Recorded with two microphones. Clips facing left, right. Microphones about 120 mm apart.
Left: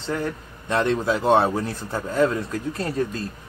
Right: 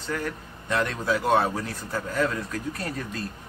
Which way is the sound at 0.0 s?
25° left (ahead or behind).